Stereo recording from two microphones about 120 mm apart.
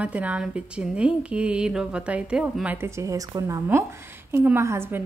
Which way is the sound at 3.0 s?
25° right (ahead or behind).